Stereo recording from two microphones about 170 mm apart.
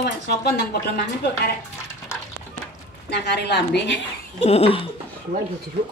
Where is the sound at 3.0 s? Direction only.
75° left (ahead or behind).